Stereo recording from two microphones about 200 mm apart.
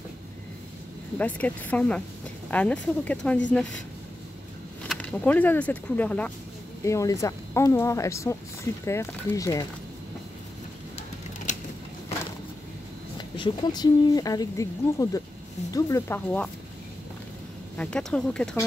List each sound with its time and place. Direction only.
1.1 s speech: 5° left (ahead or behind)
4.8 s speech: 10° left (ahead or behind)
11.5 s a sound: 35° left (ahead or behind)
13.4 s speech: 20° left (ahead or behind)
17.7 s speech: 5° left (ahead or behind)